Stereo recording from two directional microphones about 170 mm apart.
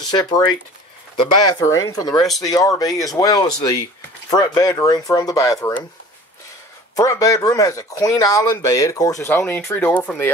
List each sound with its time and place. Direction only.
0.1 s speech: 25° left (ahead or behind)
2.1 s speech: centre (ahead or behind)
2.4 s speech: 20° left (ahead or behind)
7.0 s speech: 20° left (ahead or behind)